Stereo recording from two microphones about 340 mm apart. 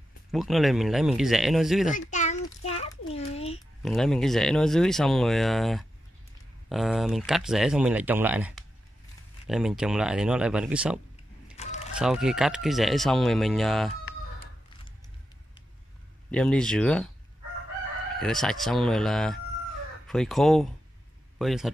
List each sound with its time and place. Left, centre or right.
0.3 s speech: centre
2.0 s a sound: left
3.8 s speech: centre
11.5 s a sound: centre
12.0 s speech: centre
16.3 s speech: centre
18.2 s speech: centre